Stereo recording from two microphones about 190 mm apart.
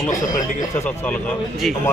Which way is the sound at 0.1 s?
40° left (ahead or behind).